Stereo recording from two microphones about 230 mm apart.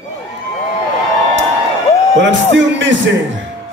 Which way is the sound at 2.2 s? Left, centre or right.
Right.